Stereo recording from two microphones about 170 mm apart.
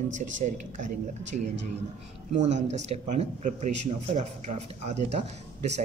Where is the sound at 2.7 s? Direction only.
40° right (ahead or behind).